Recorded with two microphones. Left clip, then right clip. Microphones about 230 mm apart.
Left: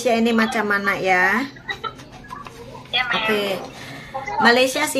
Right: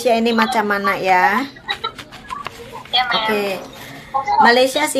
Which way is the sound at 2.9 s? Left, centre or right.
Centre.